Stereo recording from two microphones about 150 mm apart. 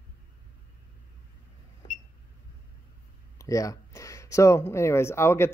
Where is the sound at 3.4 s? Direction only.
20° left (ahead or behind).